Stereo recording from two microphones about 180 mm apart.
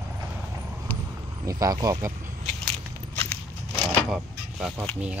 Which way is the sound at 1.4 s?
20° right (ahead or behind).